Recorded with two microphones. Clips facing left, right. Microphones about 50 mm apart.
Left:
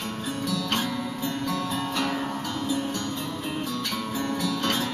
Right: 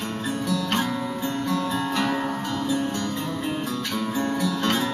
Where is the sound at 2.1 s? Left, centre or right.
Centre.